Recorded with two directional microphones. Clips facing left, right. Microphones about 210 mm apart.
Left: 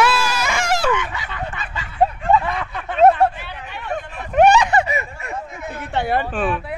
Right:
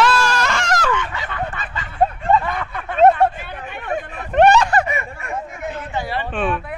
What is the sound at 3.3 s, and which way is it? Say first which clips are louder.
Chatter: right 2 dB; 50° right (ahead or behind).